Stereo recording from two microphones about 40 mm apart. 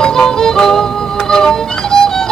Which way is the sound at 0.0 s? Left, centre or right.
Centre.